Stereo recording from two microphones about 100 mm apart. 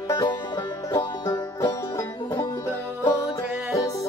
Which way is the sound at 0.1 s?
45° left (ahead or behind).